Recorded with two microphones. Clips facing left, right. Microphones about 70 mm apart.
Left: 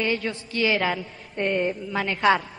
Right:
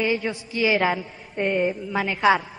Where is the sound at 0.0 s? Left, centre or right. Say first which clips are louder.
Right 2 dB; centre.